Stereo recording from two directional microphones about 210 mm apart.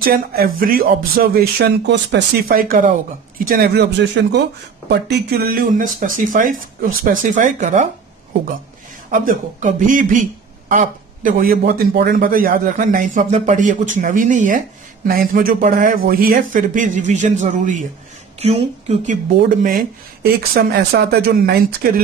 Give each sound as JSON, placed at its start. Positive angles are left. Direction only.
{"t": 0.0, "sound": "a man's voice", "side_deg": -45}